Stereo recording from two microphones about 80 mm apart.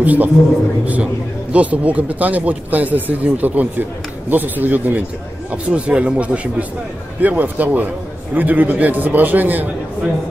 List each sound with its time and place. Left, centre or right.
0.0 s a man's voice: right
1.5 s speech: centre